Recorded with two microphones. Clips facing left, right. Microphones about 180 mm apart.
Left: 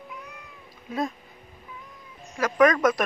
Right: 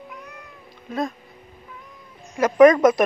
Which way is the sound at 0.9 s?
5° left (ahead or behind).